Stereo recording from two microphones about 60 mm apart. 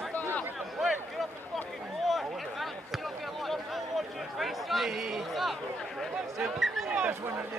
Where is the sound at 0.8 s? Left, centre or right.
Centre.